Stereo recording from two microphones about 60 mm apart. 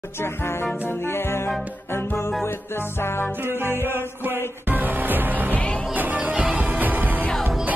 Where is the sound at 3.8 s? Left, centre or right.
Right.